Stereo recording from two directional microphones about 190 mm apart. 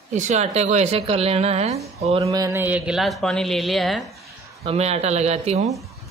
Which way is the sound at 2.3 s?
15° right (ahead or behind).